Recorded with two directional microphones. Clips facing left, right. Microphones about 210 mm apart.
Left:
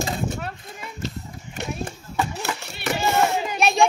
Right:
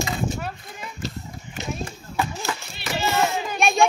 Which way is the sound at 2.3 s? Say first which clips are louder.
Left 1 dB; 70° left (ahead or behind).